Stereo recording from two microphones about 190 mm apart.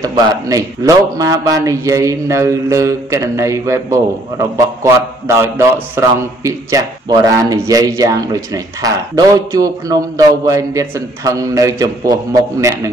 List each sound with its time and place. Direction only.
0.0 s a man's voice: 20° right (ahead or behind)